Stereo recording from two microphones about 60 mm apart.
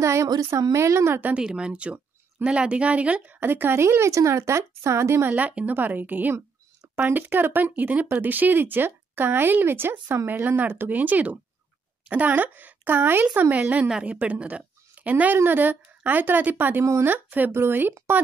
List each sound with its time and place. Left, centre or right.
0.0 s a woman's voice: right
1.3 s speech: centre
3.3 s speech: right
3.8 s a woman's voice: right
5.3 s a woman's voice: right